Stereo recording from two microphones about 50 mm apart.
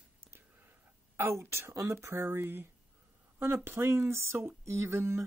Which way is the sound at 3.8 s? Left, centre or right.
Right.